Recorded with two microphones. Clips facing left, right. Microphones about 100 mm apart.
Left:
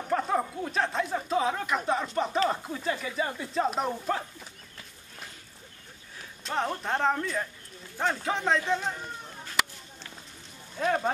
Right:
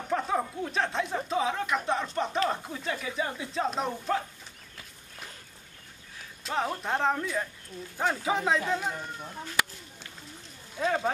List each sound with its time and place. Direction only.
0.1 s speech: centre (ahead or behind)
6.4 s speech: 5° right (ahead or behind)
10.8 s speech: 5° left (ahead or behind)